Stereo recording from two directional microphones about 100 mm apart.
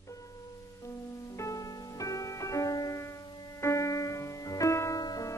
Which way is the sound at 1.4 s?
35° left (ahead or behind).